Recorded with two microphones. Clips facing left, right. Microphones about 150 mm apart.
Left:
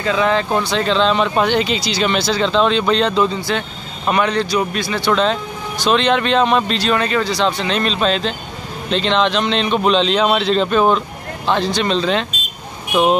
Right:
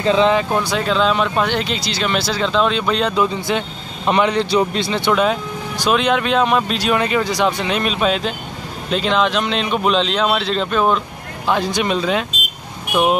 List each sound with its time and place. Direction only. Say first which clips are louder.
0.0 s speech: right 3 dB; 25° right (ahead or behind)
0.7 s speech: left 1 dB; 5° right (ahead or behind)
3.4 s speech: right 1 dB; 20° right (ahead or behind)
5.1 s speech: left 1 dB; 10° right (ahead or behind)